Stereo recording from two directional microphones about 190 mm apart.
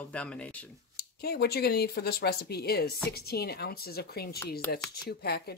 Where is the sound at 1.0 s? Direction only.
55° left (ahead or behind).